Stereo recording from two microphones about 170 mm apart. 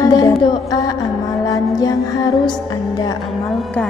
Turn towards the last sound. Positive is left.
turn(degrees=0)  # may be behind; listen again after turning